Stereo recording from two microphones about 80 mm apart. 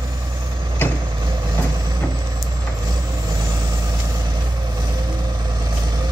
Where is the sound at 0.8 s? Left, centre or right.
Left.